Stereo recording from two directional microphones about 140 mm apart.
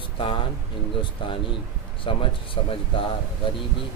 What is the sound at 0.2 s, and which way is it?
Speech, 35° left (ahead or behind).